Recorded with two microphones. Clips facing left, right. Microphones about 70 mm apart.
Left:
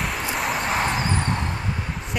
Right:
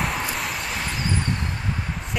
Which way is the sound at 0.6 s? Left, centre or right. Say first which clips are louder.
Left 6 dB; left.